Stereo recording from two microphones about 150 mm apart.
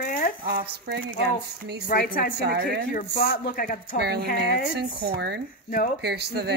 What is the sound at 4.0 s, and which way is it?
Speech, 90° right.